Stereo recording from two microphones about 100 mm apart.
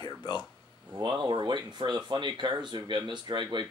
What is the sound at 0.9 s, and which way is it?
Speech, 50° right (ahead or behind).